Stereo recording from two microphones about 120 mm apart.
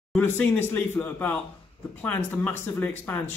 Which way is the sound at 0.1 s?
15° left (ahead or behind).